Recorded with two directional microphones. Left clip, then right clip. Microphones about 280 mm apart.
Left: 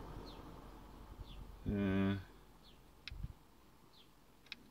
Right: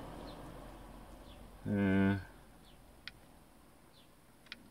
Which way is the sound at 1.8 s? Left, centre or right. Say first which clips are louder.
Right 5 dB; right.